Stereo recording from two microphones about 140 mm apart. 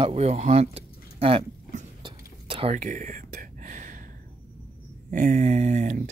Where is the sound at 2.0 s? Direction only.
40° right (ahead or behind).